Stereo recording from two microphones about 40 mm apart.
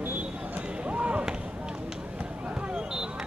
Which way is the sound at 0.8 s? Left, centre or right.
Right.